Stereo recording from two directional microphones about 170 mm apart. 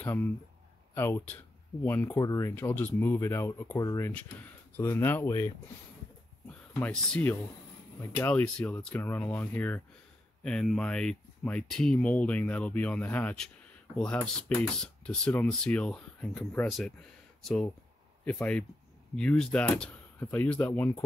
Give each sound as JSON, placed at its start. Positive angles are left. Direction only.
{"t": 0.0, "sound": "speech", "side_deg": 10}
{"t": 4.1, "sound": "speech", "side_deg": 10}
{"t": 6.8, "sound": "speech", "side_deg": 5}